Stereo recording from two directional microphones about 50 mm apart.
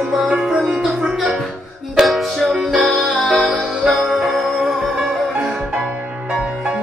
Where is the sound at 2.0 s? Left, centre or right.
Centre.